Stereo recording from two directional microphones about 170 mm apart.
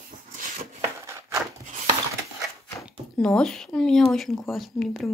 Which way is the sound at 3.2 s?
5° left (ahead or behind).